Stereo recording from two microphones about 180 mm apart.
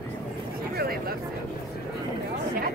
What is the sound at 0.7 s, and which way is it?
Speech, 55° right (ahead or behind).